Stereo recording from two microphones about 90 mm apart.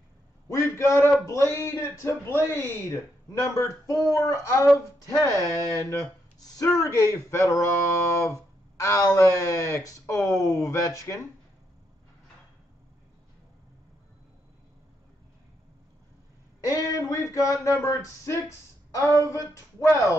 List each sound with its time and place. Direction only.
0.5 s a man's voice: 35° left (ahead or behind)
16.6 s a man's voice: 40° left (ahead or behind)